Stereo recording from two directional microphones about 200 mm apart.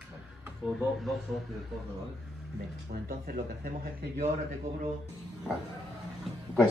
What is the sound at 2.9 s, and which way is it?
Speech, 45° right (ahead or behind).